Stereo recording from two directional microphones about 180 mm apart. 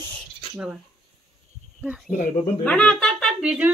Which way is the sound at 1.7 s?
5° right (ahead or behind).